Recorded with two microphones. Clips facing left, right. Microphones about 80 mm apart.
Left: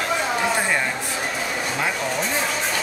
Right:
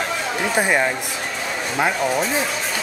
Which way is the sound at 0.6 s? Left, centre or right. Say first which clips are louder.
Right 4 dB; centre.